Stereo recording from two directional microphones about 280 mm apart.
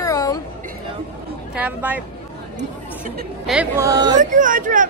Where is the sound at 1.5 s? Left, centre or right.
Centre.